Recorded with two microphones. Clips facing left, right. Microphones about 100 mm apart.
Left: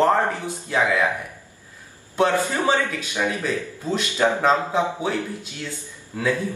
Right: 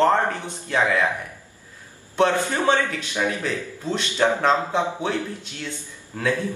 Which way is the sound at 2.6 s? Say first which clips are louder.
Right 1 dB; 10° left (ahead or behind).